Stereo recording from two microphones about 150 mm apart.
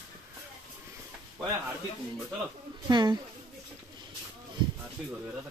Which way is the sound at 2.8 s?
30° right (ahead or behind).